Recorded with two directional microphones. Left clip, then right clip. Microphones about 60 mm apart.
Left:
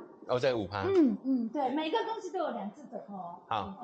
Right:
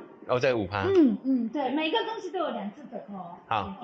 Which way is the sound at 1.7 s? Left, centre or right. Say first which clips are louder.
Right 4 dB; right.